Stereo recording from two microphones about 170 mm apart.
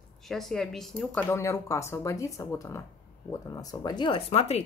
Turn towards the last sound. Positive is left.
turn(degrees=40)  # may be behind; listen again after turning